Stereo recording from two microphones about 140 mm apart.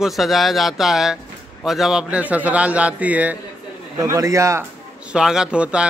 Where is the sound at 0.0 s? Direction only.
Centre (ahead or behind).